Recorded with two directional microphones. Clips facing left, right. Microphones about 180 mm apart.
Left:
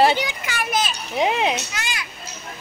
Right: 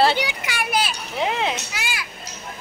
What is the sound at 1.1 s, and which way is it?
Speech, 15° left (ahead or behind).